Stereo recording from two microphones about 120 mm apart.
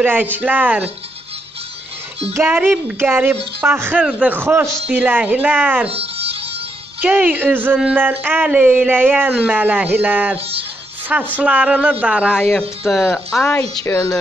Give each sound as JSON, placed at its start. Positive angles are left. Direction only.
{"t": 0.0, "sound": "speech", "side_deg": -15}
{"t": 2.3, "sound": "speech", "side_deg": -15}
{"t": 5.9, "sound": "music", "side_deg": -55}
{"t": 7.0, "sound": "a woman's voice", "side_deg": -15}